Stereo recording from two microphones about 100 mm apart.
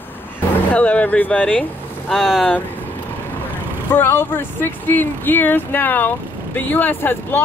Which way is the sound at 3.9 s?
20° left (ahead or behind).